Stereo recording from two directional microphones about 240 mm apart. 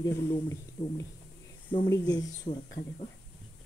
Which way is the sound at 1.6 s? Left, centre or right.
Centre.